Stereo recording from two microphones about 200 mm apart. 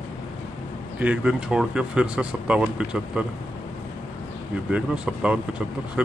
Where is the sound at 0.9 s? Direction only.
5° right (ahead or behind).